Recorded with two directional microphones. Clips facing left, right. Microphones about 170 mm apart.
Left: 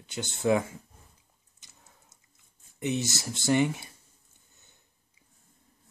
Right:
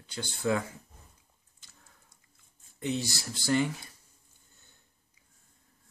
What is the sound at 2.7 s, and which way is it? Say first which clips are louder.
Speech: left 2 dB; 20° left (ahead or behind).